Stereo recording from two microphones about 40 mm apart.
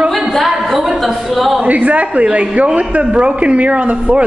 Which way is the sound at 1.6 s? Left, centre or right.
Right.